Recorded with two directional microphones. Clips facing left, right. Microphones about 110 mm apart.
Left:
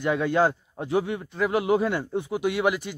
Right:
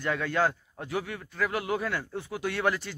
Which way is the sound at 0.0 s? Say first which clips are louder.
Left 5 dB; 20° left (ahead or behind).